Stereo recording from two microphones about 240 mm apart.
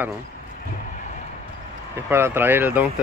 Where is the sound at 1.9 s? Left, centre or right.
Centre.